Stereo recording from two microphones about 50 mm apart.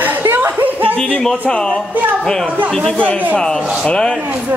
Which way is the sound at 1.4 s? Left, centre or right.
Centre.